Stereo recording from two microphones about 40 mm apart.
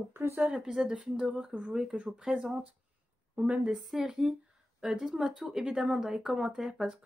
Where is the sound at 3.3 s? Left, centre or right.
Right.